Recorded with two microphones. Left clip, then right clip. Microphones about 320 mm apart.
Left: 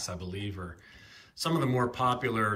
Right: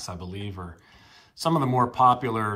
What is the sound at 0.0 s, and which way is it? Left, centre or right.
Speech, centre.